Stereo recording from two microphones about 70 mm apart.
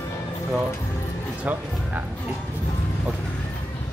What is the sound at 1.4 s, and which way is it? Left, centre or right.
Speech, right.